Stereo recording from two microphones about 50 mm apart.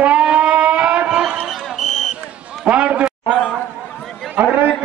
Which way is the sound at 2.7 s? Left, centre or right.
Right.